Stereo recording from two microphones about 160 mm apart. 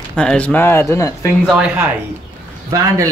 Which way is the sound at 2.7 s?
20° right (ahead or behind).